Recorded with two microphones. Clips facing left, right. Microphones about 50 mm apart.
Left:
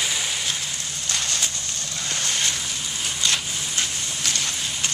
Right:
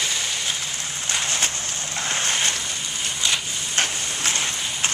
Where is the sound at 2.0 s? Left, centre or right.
Right.